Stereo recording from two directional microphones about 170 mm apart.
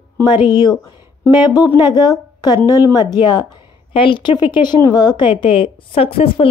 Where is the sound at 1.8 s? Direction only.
25° left (ahead or behind).